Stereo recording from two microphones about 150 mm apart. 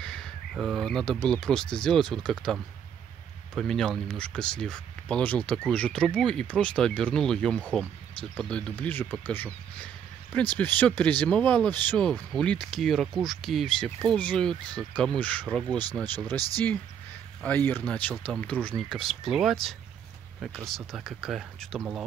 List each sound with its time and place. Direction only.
0.0 s speech: 5° left (ahead or behind)
3.5 s speech: centre (ahead or behind)
16.3 s speech: 25° right (ahead or behind)
17.4 s speech: 10° left (ahead or behind); by 22.0 s 5° right (ahead or behind)